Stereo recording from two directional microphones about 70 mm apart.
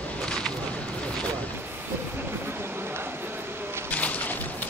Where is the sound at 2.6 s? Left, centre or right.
Right.